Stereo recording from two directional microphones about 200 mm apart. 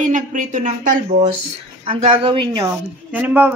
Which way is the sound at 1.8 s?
25° right (ahead or behind).